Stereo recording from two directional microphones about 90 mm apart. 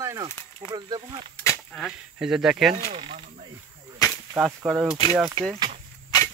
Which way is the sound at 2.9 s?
90° right.